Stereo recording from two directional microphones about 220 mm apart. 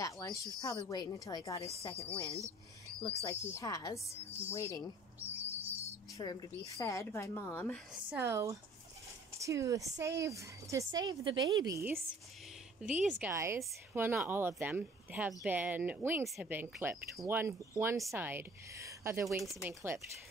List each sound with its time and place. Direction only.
0.0 s a sound: 15° left (ahead or behind)
0.8 s speech: 15° left (ahead or behind)
1.8 s a woman's voice: 25° left (ahead or behind)
2.0 s speech: 15° right (ahead or behind)
3.4 s speech: 15° left (ahead or behind)
5.2 s bird: 10° right (ahead or behind)
6.1 s speech: 15° left (ahead or behind)
8.1 s speech: 10° right (ahead or behind)
13.0 s speech: 10° right (ahead or behind)
19.4 s speech: centre (ahead or behind)
19.7 s speech: 10° right (ahead or behind)